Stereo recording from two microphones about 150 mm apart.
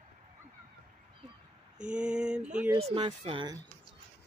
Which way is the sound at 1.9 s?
5° right (ahead or behind).